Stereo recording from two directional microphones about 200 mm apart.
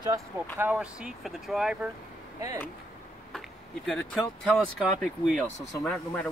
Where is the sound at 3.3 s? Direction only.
Centre (ahead or behind).